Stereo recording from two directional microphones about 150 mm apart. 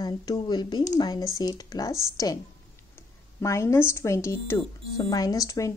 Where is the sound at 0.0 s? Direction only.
25° left (ahead or behind).